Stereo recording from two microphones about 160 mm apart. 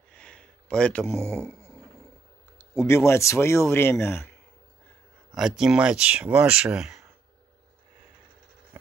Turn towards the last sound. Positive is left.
turn(degrees=-5)  # may be behind; listen again after turning